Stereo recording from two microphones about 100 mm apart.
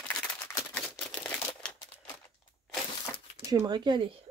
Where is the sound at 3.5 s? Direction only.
45° right (ahead or behind).